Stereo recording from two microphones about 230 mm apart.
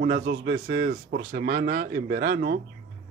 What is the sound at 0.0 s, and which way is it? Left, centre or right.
A man's voice, right.